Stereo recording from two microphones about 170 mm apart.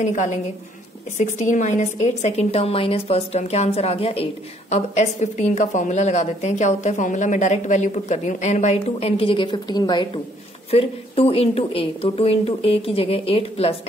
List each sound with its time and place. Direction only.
0.0 s a woman's voice: 45° left (ahead or behind)